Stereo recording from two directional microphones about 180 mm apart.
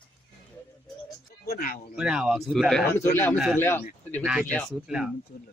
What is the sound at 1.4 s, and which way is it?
Speech, 55° left (ahead or behind).